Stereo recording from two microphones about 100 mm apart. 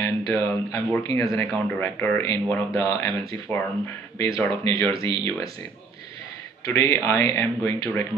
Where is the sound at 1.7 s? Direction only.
15° left (ahead or behind).